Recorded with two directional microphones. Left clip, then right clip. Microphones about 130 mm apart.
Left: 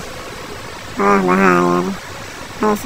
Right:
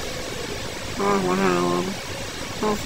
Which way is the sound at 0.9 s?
60° left (ahead or behind).